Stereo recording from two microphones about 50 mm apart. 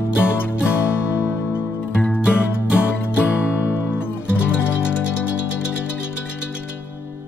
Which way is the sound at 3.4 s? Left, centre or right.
Left.